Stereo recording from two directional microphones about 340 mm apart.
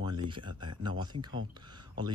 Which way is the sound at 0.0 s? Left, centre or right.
Centre.